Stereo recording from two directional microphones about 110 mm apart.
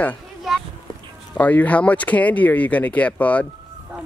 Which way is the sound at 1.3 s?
15° left (ahead or behind).